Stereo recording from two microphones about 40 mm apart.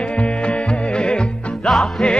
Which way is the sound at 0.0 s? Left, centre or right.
Left.